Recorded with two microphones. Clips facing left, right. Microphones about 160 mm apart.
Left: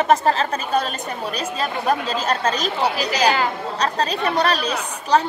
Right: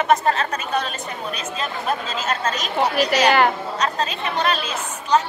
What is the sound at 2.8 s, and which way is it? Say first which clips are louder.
Speech: right 5 dB; 55° right (ahead or behind).